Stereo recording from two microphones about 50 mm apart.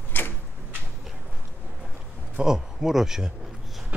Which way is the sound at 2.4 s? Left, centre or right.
Centre.